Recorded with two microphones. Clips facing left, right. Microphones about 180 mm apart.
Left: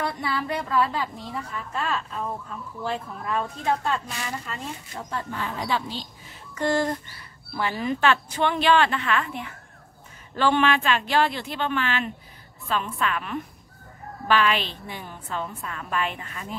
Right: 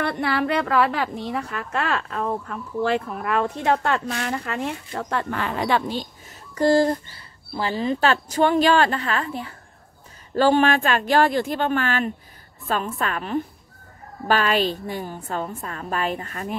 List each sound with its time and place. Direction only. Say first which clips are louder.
0.0 s a woman's voice: right 5 dB; 70° right (ahead or behind)
6.5 s speech: right 6 dB; 35° right (ahead or behind)